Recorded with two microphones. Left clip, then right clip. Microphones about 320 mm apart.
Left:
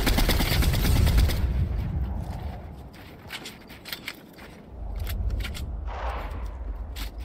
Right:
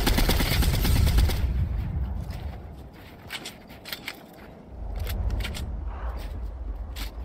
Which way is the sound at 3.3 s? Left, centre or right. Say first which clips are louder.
Right 1 dB; centre.